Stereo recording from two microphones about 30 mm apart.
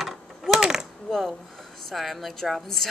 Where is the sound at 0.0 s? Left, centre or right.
Centre.